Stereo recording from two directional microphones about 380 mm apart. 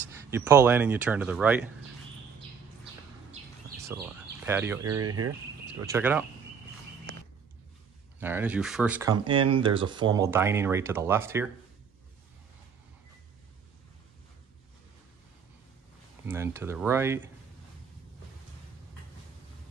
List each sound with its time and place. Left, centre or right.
0.3 s speech: centre
3.9 s a sound: centre
5.0 s speech: right
5.9 s speech: centre
8.2 s speech: centre
16.3 s speech: centre